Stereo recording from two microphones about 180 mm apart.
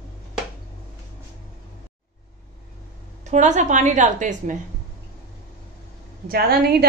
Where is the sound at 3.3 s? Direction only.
40° right (ahead or behind).